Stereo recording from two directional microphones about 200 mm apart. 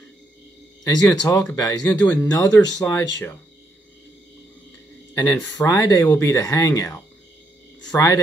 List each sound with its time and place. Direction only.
0.8 s speech: 15° left (ahead or behind)
5.1 s speech: 15° left (ahead or behind)